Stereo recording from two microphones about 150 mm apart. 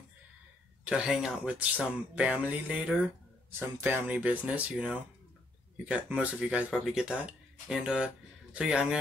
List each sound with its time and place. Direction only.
0.8 s a man's voice: 5° right (ahead or behind)